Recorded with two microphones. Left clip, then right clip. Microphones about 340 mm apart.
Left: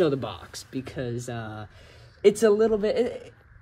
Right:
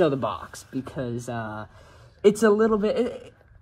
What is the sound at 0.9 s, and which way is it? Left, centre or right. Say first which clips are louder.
Speech: right 2 dB; centre.